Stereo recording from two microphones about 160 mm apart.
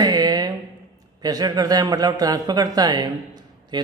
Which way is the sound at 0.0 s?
25° right (ahead or behind).